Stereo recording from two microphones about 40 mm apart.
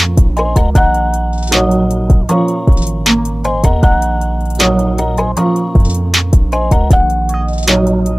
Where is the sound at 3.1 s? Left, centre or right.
Centre.